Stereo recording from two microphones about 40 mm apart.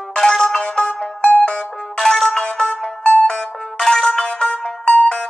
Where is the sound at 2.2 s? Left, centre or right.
Centre.